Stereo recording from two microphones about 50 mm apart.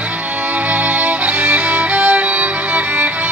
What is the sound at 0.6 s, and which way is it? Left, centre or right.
Music, right.